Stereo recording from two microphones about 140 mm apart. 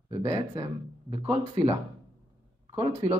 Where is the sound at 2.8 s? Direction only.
50° right (ahead or behind).